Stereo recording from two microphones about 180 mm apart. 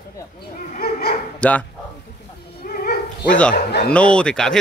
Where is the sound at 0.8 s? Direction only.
60° left (ahead or behind).